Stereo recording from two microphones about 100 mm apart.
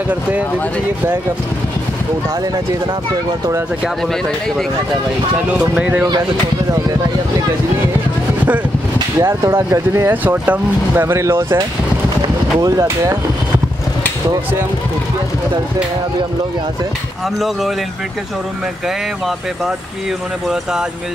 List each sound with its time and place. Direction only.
0.1 s speech: 15° right (ahead or behind)
5.8 s speech: 10° right (ahead or behind)
9.2 s speech: 25° right (ahead or behind)
10.2 s speech: 15° right (ahead or behind); by 12.8 s 40° right (ahead or behind)
12.8 s speech: 25° right (ahead or behind)